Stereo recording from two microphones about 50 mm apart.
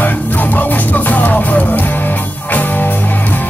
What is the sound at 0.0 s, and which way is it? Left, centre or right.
Music, left.